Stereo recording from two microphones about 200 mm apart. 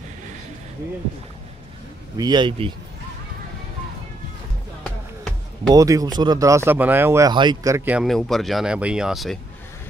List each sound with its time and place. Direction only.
2.1 s speech: 20° right (ahead or behind)
5.7 s speech: 15° right (ahead or behind); by 9.4 s centre (ahead or behind)